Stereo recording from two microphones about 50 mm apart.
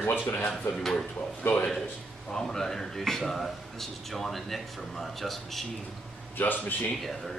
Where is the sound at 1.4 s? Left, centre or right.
Left.